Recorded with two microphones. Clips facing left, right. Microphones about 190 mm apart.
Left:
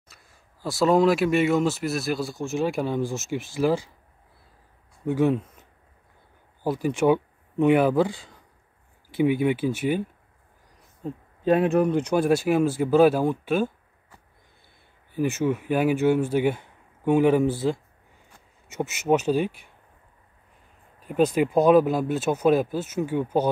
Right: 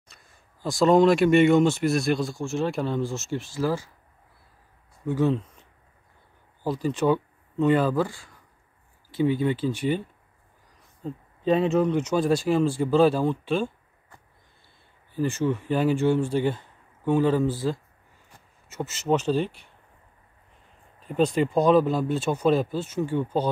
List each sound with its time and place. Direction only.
0.1 s speech: 5° left (ahead or behind)
2.7 s speech: 10° left (ahead or behind)
5.0 s speech: 15° left (ahead or behind)
15.1 s speech: 10° left (ahead or behind)
21.0 s speech: 5° left (ahead or behind)